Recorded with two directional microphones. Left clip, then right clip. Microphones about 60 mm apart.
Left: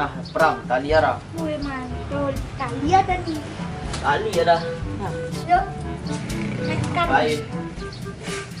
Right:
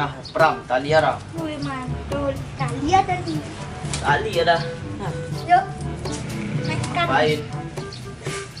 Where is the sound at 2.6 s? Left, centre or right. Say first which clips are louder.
Even; right.